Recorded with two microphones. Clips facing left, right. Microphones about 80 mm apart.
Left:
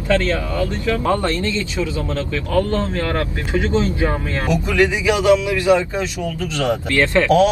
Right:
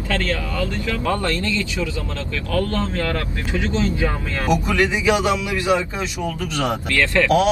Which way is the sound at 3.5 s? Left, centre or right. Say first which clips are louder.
Left 3 dB; left.